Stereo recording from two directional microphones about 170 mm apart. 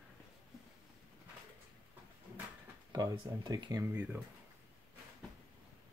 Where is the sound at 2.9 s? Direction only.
25° right (ahead or behind).